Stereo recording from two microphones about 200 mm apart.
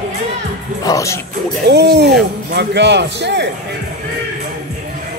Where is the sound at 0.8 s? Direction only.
15° left (ahead or behind).